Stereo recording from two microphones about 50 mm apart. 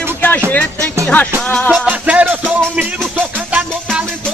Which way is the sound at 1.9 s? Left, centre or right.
Right.